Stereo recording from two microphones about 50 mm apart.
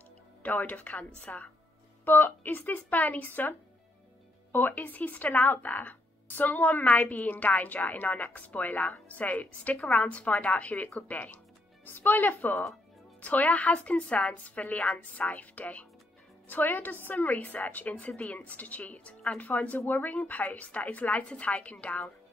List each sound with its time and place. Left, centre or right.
0.4 s speech: left
2.0 s a woman's voice: left
16.4 s a woman's voice: left